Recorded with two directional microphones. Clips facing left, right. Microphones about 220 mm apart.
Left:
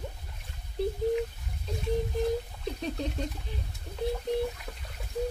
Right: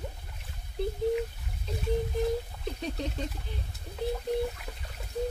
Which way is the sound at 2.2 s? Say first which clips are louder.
Even; centre (ahead or behind).